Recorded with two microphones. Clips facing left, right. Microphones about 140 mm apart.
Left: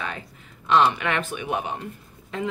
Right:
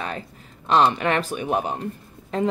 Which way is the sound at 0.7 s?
35° right (ahead or behind).